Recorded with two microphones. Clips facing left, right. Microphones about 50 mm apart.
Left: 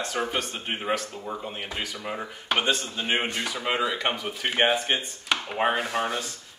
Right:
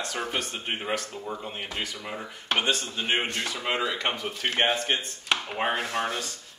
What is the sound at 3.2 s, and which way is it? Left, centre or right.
Speech, centre.